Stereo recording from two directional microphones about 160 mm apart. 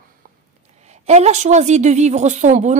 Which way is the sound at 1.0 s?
45° right (ahead or behind).